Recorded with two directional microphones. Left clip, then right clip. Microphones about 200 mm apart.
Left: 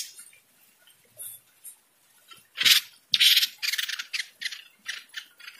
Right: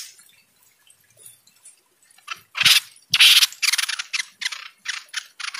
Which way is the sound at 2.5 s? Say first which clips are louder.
Right 4 dB; 20° right (ahead or behind).